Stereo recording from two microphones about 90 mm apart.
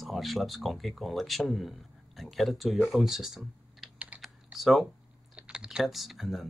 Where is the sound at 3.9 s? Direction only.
15° right (ahead or behind).